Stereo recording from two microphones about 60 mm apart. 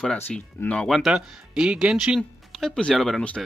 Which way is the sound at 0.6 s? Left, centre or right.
Left.